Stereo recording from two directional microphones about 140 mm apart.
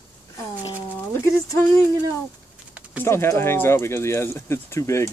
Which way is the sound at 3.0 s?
20° left (ahead or behind).